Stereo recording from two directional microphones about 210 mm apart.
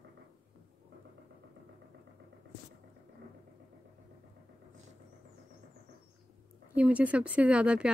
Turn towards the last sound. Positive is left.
turn(degrees=-5)  # may be behind; listen again after turning